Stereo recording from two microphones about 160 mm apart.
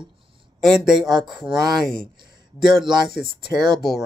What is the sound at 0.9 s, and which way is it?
Speech, 25° right (ahead or behind).